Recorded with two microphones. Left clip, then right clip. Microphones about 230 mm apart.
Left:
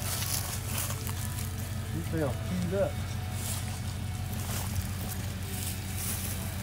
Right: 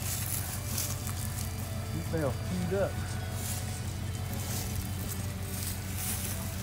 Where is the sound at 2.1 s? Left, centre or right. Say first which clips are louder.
Even; centre.